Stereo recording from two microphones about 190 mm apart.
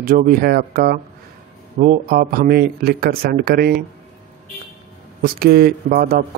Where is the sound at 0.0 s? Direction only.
45° right (ahead or behind).